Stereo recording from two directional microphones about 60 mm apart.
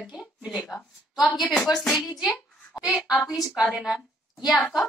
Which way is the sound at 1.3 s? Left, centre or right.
Centre.